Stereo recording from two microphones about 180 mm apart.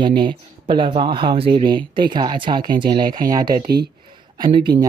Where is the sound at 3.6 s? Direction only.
60° right (ahead or behind).